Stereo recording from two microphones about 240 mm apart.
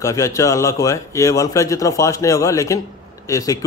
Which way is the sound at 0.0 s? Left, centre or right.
Centre.